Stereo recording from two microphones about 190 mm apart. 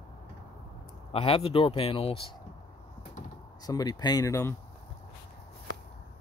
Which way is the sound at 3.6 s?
20° left (ahead or behind).